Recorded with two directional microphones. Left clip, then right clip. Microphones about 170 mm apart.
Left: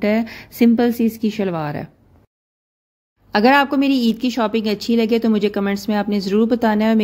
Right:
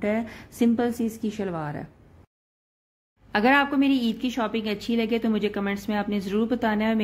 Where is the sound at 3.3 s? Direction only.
40° left (ahead or behind).